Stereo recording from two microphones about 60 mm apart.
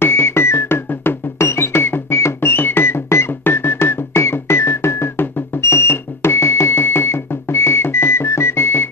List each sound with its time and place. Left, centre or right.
0.0 s music: left